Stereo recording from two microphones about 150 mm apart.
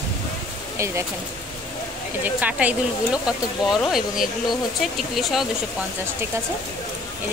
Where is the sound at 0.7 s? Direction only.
20° right (ahead or behind).